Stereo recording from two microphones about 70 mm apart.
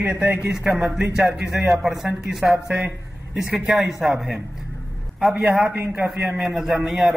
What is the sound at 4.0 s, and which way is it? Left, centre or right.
A man's voice, centre.